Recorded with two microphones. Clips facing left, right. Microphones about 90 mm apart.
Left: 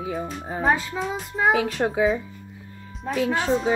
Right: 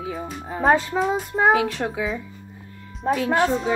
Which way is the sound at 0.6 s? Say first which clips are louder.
Right 4 dB; 40° right (ahead or behind).